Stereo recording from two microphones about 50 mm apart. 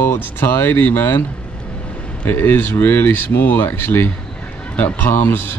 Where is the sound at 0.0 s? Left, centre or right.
Left.